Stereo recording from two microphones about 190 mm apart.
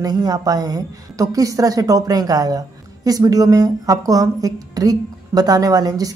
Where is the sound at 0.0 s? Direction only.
20° right (ahead or behind).